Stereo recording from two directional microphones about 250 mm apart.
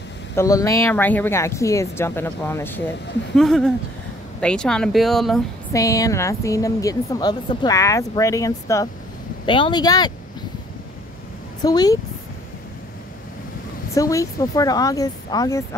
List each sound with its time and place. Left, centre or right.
0.4 s a woman's voice: centre
5.7 s a woman's voice: centre
11.6 s a woman's voice: centre
13.9 s a woman's voice: centre